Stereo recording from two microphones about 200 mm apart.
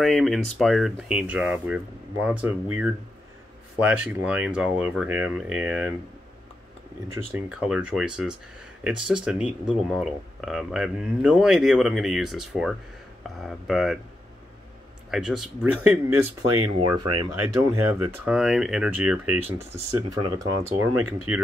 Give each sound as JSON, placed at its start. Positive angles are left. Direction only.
{"t": 0.0, "sound": "speech", "side_deg": 0}
{"t": 7.3, "sound": "speech", "side_deg": -5}
{"t": 15.0, "sound": "speech", "side_deg": -5}
{"t": 16.5, "sound": "speech", "side_deg": -20}
{"t": 17.6, "sound": "speech", "side_deg": -10}
{"t": 19.9, "sound": "speech", "side_deg": -20}